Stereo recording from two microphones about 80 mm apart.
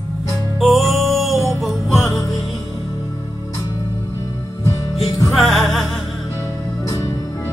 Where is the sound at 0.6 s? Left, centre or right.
Centre.